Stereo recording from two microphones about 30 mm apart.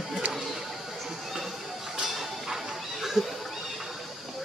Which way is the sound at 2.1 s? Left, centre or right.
Centre.